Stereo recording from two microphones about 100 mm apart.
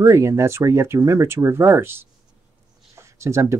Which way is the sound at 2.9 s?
30° right (ahead or behind).